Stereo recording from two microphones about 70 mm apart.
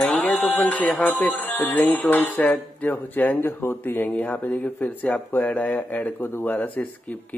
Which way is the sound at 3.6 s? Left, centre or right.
Left.